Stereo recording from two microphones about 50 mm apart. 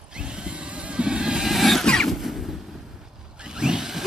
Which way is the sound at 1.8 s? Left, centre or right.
Centre.